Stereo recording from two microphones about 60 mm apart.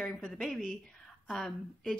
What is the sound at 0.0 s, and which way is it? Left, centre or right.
Speech, centre.